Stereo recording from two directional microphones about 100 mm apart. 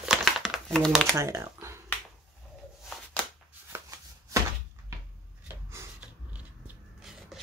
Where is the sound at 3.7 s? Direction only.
30° right (ahead or behind).